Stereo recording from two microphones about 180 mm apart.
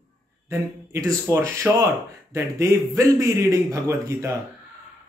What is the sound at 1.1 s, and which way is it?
A man's voice, 15° right (ahead or behind).